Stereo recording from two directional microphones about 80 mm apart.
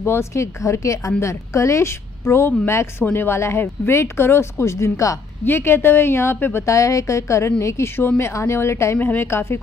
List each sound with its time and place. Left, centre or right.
0.0 s a woman's voice: left